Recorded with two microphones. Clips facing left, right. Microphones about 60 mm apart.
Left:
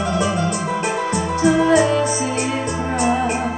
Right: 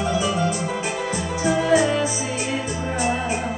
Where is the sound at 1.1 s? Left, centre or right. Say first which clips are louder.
Left 6 dB; left.